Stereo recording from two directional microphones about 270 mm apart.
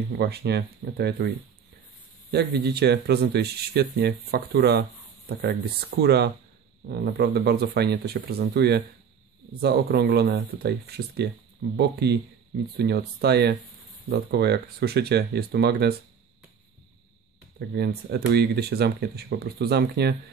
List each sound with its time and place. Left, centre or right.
0.2 s speech: right
2.3 s speech: right
17.6 s speech: right